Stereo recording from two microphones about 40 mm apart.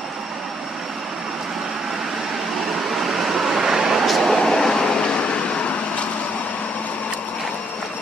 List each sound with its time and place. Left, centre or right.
2.9 s vehicle: centre
4.0 s vehicle: centre; by 5.4 s left